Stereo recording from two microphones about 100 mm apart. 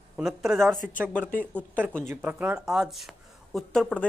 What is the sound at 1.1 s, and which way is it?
Speech, 15° left (ahead or behind).